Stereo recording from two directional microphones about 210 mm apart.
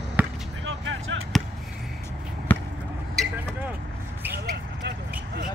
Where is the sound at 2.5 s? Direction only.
10° left (ahead or behind).